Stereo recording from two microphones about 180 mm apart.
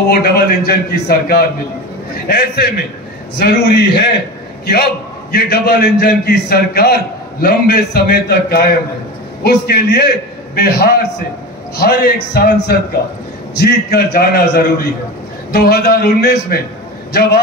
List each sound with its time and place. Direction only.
0.1 s a man's voice: 60° left (ahead or behind)